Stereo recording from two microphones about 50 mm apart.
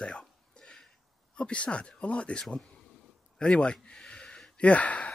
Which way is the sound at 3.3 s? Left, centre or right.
Centre.